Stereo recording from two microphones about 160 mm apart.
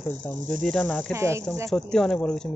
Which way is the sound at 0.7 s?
5° left (ahead or behind).